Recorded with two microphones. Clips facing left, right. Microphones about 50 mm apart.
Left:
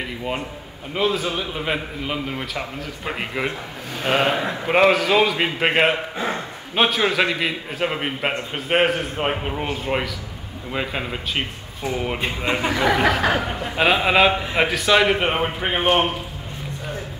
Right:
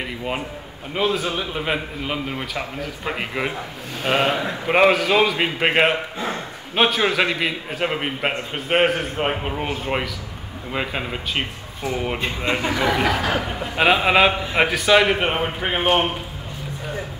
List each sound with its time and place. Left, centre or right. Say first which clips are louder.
0.9 s a man's voice: even; centre
6.1 s a man's voice: left 2 dB; left
6.7 s a man's voice: right 1 dB; centre
12.4 s a man's voice: left 1 dB; centre